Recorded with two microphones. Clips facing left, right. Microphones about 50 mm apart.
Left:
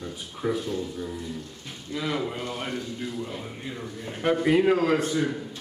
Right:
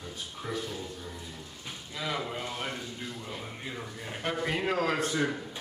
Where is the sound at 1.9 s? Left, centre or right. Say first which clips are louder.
Left 5 dB; centre.